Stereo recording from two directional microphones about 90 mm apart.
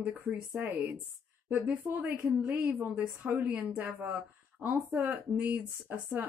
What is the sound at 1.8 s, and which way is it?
Speech, 25° right (ahead or behind).